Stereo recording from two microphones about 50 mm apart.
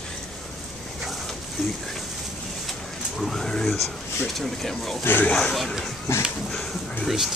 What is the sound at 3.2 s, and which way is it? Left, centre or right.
Speech, centre.